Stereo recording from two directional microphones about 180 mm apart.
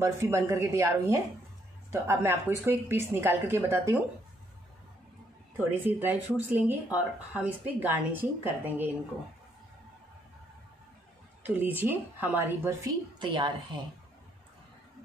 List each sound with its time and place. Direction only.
0.0 s speech: 15° right (ahead or behind)
5.6 s speech: 10° right (ahead or behind)
11.4 s speech: 10° right (ahead or behind)
13.2 s a woman's voice: 30° right (ahead or behind)